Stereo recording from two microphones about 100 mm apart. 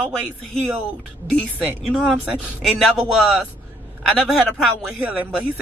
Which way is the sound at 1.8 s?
Centre (ahead or behind).